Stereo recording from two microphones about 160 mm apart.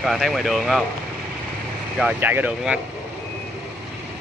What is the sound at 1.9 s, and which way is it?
Speech, 10° right (ahead or behind).